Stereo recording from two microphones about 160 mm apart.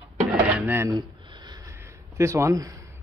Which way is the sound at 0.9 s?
25° right (ahead or behind).